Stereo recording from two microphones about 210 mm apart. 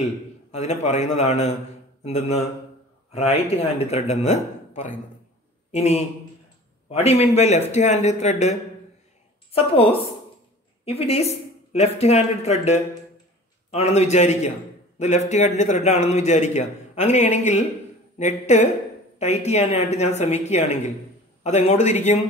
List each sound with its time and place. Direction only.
0.0 s a man's voice: 30° left (ahead or behind)
9.6 s a man's voice: 25° left (ahead or behind)